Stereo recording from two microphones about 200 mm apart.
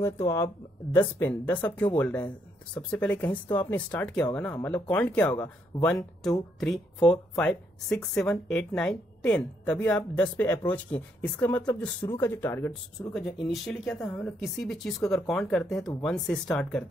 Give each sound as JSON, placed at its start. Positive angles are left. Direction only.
{"t": 0.0, "sound": "speech", "side_deg": 15}
{"t": 13.1, "sound": "speech", "side_deg": 0}